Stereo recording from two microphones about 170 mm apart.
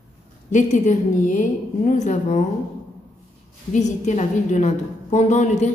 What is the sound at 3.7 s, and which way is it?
A woman's voice, 45° left (ahead or behind).